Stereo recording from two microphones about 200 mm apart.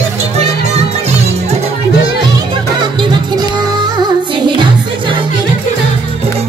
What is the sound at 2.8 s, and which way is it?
Music, 20° right (ahead or behind).